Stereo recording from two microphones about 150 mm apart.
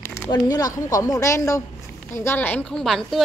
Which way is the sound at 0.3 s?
25° left (ahead or behind).